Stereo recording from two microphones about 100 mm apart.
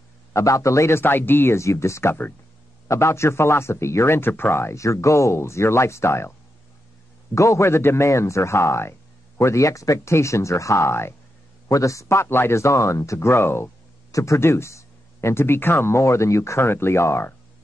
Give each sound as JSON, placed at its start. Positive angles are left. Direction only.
{"t": 0.3, "sound": "speech", "side_deg": 30}
{"t": 7.3, "sound": "speech", "side_deg": 30}